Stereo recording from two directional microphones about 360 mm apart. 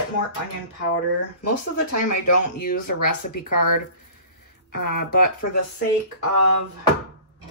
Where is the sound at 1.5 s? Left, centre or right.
Left.